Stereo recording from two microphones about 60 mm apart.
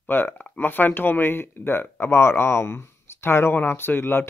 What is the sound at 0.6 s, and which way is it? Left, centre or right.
Speech, left.